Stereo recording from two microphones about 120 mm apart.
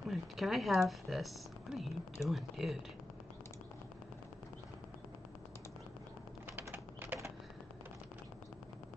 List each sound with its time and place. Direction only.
0.1 s speech: centre (ahead or behind)
6.5 s typing: 15° right (ahead or behind)